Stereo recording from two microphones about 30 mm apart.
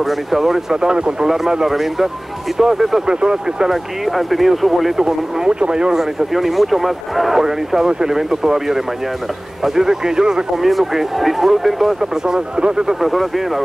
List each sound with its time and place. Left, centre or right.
0.0 s speech: centre
0.7 s speech: right
1.2 s speech: centre
3.1 s speech: right
3.7 s a man's voice: centre
4.9 s speech: centre
5.5 s speech: right
5.9 s a man's voice: centre
7.3 s speech: centre
10.6 s a man's voice: centre
12.0 s speech: right
13.0 s a man's voice: centre